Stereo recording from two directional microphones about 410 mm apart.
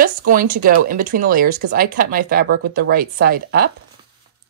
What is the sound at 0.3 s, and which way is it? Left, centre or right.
Speech, centre.